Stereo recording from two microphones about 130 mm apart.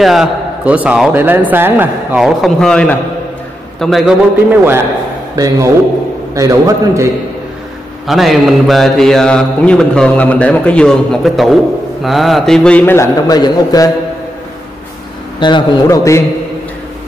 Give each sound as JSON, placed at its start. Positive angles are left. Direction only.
{"t": 0.0, "sound": "a man's voice", "side_deg": -5}
{"t": 2.1, "sound": "mantra", "side_deg": 0}
{"t": 4.5, "sound": "a man's voice", "side_deg": -15}
{"t": 8.1, "sound": "mantra", "side_deg": 0}
{"t": 15.4, "sound": "a man's voice", "side_deg": 40}
{"t": 15.9, "sound": "mantra", "side_deg": 25}